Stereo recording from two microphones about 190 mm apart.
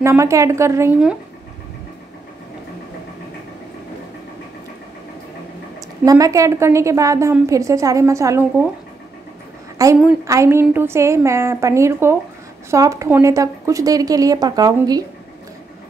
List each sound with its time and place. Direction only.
0.0 s a woman's voice: 15° right (ahead or behind)
6.0 s a woman's voice: 15° right (ahead or behind)
9.8 s a woman's voice: 20° right (ahead or behind)